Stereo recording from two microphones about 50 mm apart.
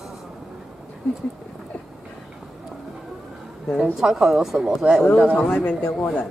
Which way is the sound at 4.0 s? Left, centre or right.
Centre.